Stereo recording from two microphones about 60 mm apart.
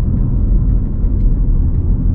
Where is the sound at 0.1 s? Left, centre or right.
Centre.